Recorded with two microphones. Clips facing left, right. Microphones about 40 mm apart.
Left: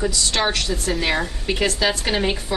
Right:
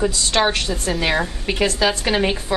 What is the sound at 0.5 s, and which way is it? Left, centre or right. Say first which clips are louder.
Speech: right 1 dB; right.